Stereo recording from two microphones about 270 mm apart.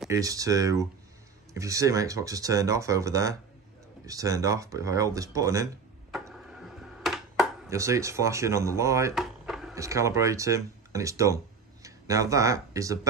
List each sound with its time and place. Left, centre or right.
0.0 s speech: centre
6.1 s a sound: centre
7.7 s speech: centre
9.2 s drawer open or close: centre
9.8 s speech: centre